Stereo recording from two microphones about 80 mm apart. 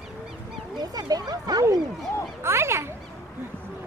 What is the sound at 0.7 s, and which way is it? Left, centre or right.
Speech, right.